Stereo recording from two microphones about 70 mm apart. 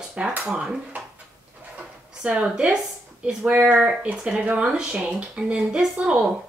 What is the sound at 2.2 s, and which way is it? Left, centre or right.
Speech, centre.